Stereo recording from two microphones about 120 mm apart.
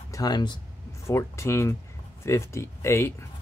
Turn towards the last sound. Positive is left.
turn(degrees=20)  # may be behind; listen again after turning